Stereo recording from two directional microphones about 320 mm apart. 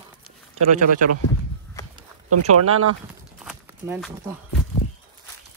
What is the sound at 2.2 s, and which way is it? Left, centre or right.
Speech, right.